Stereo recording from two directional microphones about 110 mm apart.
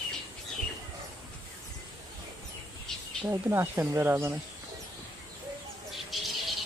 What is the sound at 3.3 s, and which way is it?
Speech, 25° right (ahead or behind).